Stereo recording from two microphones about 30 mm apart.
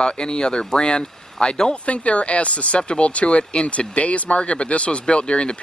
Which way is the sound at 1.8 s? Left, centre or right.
Left.